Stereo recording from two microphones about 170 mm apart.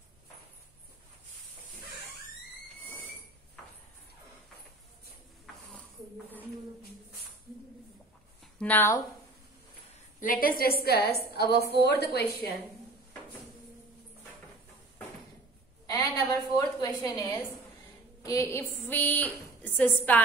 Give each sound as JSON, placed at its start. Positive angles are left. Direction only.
{"t": 2.9, "sound": "train wheels squealing", "side_deg": 10}
{"t": 8.5, "sound": "a woman's voice", "side_deg": 10}
{"t": 10.2, "sound": "a woman's voice", "side_deg": 55}
{"t": 15.9, "sound": "a sound", "side_deg": 20}